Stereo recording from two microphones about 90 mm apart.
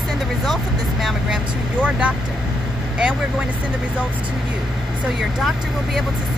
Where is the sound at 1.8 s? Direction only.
15° right (ahead or behind).